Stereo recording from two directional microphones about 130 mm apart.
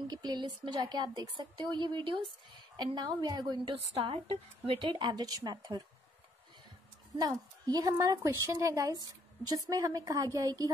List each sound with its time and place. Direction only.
0.1 s a woman's voice: 35° right (ahead or behind)
7.2 s a woman's voice: 30° right (ahead or behind)